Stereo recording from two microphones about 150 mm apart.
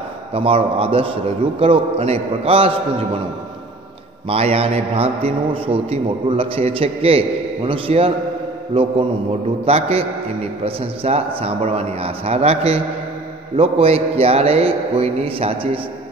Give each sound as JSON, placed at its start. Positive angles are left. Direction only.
{"t": 0.3, "sound": "a man's voice", "side_deg": -40}
{"t": 4.3, "sound": "a man's voice", "side_deg": -40}